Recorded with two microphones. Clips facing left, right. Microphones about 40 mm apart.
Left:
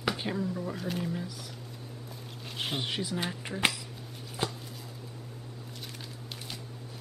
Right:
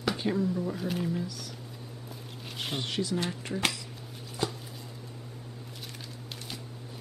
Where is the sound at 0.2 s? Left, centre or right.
Centre.